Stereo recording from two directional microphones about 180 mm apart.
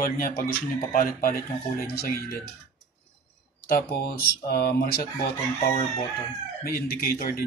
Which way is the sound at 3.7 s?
55° left (ahead or behind).